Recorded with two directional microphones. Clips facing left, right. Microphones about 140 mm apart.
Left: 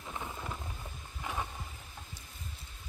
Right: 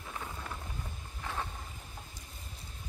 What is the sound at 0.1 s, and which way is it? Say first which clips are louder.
Thunder: left 2 dB; 15° left (ahead or behind).